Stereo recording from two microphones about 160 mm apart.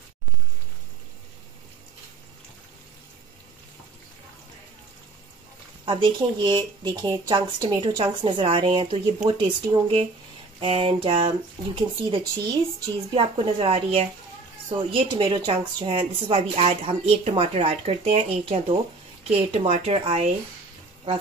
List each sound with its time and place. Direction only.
5.9 s speech: 30° right (ahead or behind)